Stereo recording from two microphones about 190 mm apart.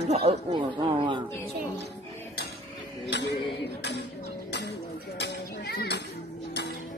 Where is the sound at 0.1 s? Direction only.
30° right (ahead or behind).